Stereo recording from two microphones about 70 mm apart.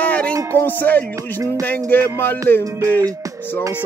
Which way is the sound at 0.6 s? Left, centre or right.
Left.